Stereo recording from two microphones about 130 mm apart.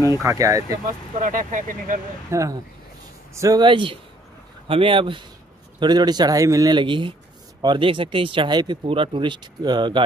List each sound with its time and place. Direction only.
0.2 s speech: 25° right (ahead or behind)
1.2 s speech: 85° right
2.3 s speech: 20° right (ahead or behind)
3.6 s speech: 40° right (ahead or behind)